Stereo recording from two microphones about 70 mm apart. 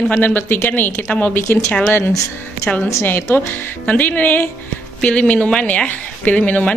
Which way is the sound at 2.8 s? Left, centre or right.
Left.